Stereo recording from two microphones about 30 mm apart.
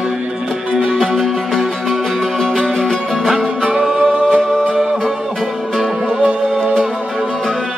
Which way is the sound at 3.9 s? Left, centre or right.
Right.